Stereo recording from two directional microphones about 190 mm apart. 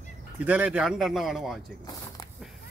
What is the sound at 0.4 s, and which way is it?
Speech, 5° right (ahead or behind).